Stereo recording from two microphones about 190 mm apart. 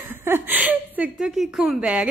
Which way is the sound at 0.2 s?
10° right (ahead or behind).